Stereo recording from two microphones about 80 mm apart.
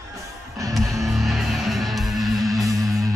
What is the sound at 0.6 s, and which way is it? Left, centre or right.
Music, right.